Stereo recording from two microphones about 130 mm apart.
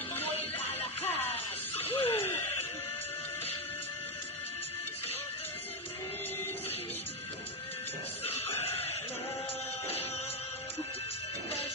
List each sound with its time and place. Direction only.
1.1 s music: 50° left (ahead or behind)
8.3 s music: 50° left (ahead or behind)